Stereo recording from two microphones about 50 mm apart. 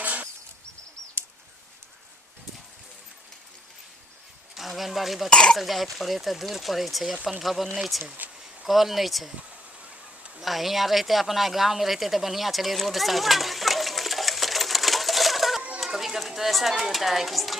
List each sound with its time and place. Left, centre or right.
0.0 s a sound: right
4.6 s speech: centre
5.3 s speech: centre
5.6 s speech: centre
10.4 s a sound: centre
15.8 s speech: centre